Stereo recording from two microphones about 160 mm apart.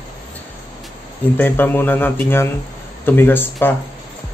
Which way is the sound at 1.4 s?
10° left (ahead or behind).